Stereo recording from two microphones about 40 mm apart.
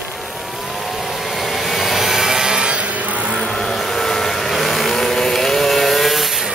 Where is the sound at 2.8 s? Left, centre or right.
Right.